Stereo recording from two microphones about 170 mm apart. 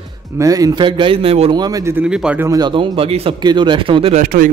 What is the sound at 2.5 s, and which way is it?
Speech, 25° right (ahead or behind).